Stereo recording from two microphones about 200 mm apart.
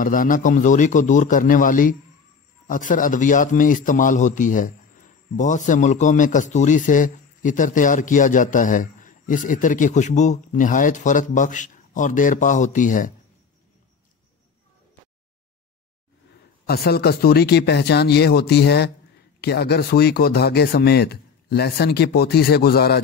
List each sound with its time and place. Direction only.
0.0 s a man's voice: 45° left (ahead or behind)
16.6 s speech: 50° left (ahead or behind)